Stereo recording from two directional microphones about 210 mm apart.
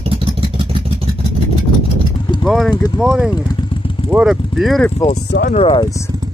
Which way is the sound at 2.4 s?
Centre (ahead or behind).